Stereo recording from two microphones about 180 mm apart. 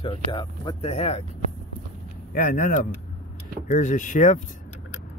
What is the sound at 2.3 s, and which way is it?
A man's voice, 50° left (ahead or behind).